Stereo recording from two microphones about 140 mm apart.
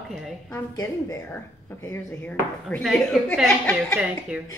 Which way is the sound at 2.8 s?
Centre (ahead or behind).